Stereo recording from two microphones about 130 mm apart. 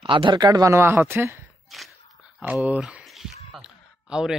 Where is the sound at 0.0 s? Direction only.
40° right (ahead or behind); by 1.4 s 15° right (ahead or behind).